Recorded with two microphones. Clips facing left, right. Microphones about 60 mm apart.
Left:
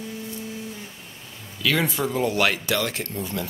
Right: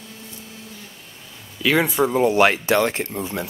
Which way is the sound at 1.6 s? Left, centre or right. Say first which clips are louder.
Right 5 dB; centre.